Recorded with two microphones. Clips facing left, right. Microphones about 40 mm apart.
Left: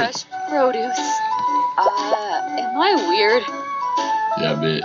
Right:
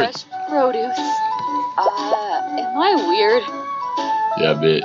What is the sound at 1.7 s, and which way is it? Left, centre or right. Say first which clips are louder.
Music: even; centre.